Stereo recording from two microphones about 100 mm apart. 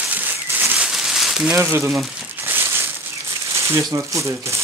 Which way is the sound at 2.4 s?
25° right (ahead or behind).